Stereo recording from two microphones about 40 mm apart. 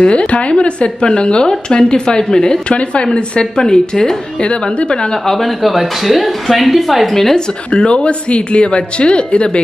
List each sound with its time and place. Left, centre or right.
0.0 s a woman's voice: left
2.7 s a woman's voice: left; by 4.2 s centre
4.4 s a woman's voice: left
5.1 s speech: centre
7.3 s a woman's voice: left